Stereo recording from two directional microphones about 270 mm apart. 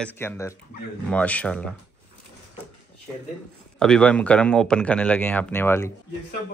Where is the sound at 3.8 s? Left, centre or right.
Centre.